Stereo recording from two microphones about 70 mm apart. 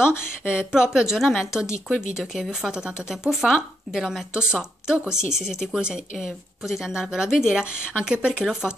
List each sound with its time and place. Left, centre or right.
0.0 s speech: left
0.5 s a woman's voice: centre